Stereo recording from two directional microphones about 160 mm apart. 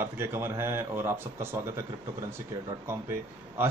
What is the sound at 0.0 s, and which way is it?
Speech, 15° right (ahead or behind).